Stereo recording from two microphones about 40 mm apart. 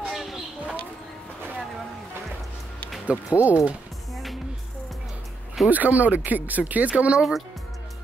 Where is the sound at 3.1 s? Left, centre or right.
Right.